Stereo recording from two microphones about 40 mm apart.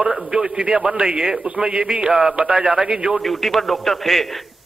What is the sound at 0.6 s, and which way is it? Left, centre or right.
A man's voice, right.